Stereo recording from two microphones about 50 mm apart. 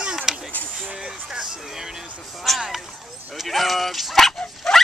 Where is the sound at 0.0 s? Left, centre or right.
Centre.